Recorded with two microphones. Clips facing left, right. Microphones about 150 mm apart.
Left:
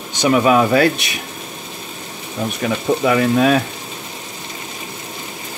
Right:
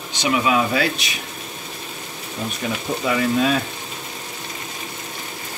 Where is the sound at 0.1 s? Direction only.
45° left (ahead or behind).